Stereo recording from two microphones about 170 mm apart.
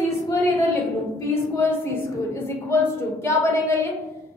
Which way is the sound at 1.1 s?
15° left (ahead or behind).